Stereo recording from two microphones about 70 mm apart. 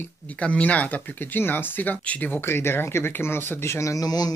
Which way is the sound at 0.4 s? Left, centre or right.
Centre.